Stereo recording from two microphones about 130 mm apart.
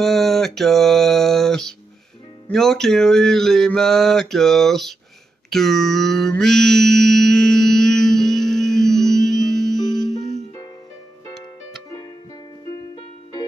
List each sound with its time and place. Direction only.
0.0 s music: centre (ahead or behind)
5.5 s mantra: 5° left (ahead or behind)
12.9 s music: 35° left (ahead or behind)